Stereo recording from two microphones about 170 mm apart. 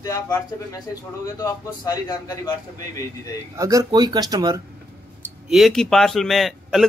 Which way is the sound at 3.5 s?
20° right (ahead or behind).